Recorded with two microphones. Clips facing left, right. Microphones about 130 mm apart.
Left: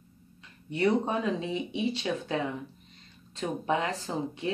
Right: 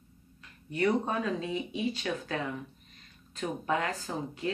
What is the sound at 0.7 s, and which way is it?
Speech, 25° left (ahead or behind).